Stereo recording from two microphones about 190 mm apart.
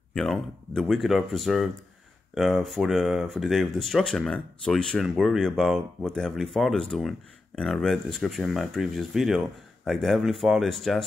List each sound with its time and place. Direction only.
0.1 s speech: centre (ahead or behind)